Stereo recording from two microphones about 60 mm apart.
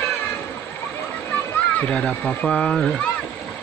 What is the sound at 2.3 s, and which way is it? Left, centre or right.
Speech, left.